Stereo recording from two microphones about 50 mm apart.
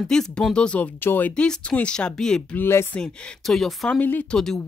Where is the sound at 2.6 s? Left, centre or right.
Left.